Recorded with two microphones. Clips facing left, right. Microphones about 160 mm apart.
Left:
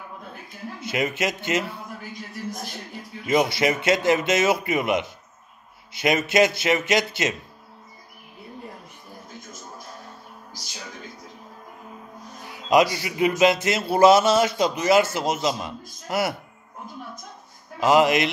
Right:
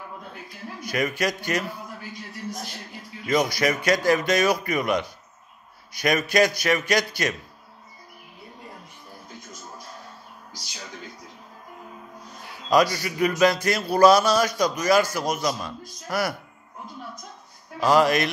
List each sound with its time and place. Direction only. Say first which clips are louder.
0.7 s music: even; 25° left (ahead or behind)
3.3 s music: left 2 dB; 25° left (ahead or behind)
12.6 s music: left 1 dB; 20° left (ahead or behind)
17.7 s music: left 1 dB; 20° left (ahead or behind)